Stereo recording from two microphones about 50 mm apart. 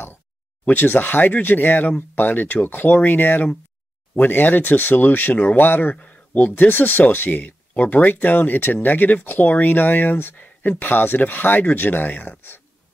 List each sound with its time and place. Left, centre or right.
0.7 s speech: left